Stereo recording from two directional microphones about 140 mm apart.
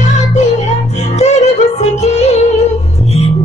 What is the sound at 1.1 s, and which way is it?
Music, 55° left (ahead or behind).